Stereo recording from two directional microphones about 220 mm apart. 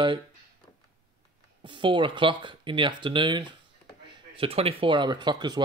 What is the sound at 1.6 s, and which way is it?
Speech, 20° right (ahead or behind).